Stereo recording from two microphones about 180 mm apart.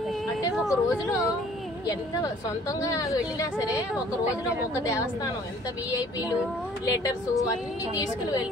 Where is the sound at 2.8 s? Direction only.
20° left (ahead or behind).